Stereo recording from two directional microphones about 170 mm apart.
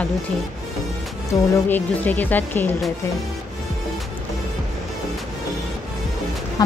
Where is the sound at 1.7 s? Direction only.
10° left (ahead or behind).